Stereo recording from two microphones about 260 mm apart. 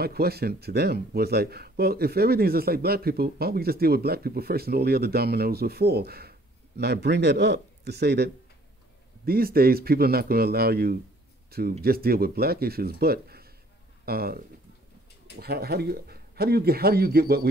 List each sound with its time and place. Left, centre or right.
0.0 s speech: right